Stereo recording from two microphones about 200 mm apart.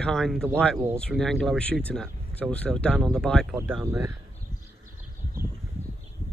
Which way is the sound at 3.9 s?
15° right (ahead or behind).